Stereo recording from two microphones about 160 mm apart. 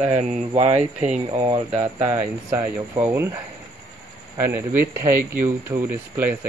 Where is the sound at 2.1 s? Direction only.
15° right (ahead or behind).